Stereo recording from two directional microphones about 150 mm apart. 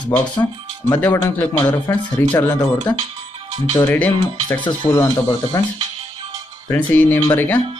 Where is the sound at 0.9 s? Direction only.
15° left (ahead or behind).